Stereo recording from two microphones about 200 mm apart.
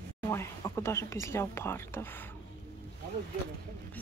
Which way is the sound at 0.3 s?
15° left (ahead or behind).